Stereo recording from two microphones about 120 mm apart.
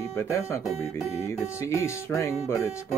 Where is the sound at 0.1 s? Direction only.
20° left (ahead or behind).